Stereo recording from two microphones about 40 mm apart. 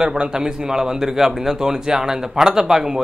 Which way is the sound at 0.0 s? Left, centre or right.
Centre.